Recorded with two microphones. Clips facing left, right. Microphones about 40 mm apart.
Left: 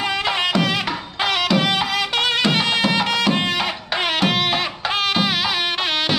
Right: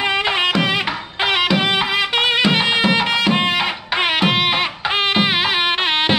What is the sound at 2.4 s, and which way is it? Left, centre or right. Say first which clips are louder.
Music: right 3 dB; centre.